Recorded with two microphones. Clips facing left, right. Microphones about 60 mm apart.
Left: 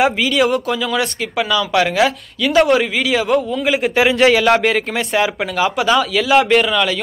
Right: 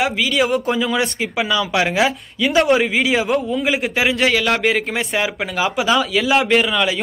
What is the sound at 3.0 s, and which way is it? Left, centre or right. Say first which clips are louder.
Speech: even; centre.